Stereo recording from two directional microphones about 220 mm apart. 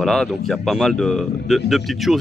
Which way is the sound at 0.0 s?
Centre (ahead or behind).